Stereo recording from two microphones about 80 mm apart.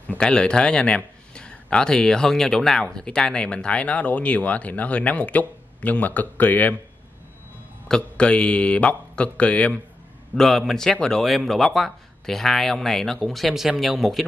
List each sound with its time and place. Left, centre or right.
0.2 s speech: centre
7.9 s speech: centre
10.3 s speech: centre